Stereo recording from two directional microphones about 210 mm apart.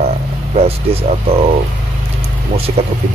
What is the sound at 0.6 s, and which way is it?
Speech, 30° right (ahead or behind).